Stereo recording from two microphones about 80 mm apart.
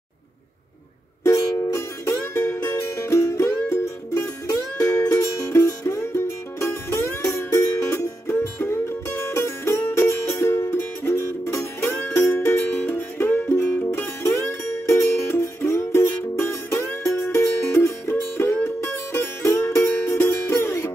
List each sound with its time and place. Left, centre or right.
1.2 s music: left